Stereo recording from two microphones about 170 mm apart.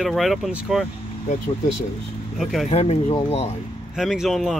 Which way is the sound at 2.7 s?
40° left (ahead or behind).